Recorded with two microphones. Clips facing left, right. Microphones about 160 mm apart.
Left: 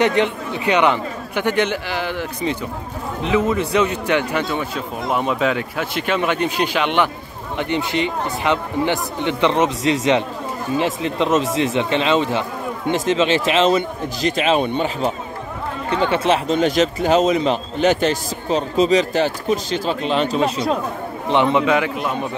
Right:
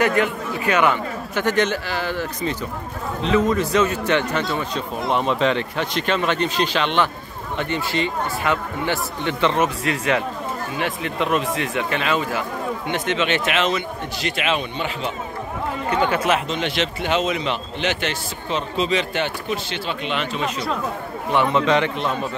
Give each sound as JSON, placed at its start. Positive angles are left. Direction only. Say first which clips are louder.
{"t": 0.0, "sound": "a man's voice", "louder": "left 2 dB", "side_deg": 20}
{"t": 15.9, "sound": "speech", "louder": "left 2 dB", "side_deg": 30}
{"t": 16.5, "sound": "a man's voice", "louder": "left 7 dB", "side_deg": 40}
{"t": 21.3, "sound": "speech", "louder": "left 3 dB", "side_deg": 20}
{"t": 21.6, "sound": "speech", "louder": "left 1 dB", "side_deg": 10}